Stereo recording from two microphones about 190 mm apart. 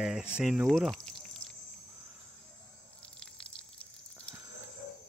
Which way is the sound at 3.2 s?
5° left (ahead or behind).